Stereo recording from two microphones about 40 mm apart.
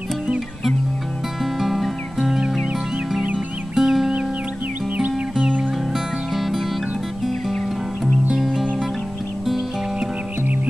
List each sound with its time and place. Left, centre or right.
1.4 s music: centre
3.7 s music: centre
5.4 s music: right
5.9 s music: centre